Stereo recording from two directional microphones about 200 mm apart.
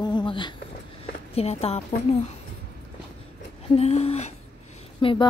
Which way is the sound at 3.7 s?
30° left (ahead or behind).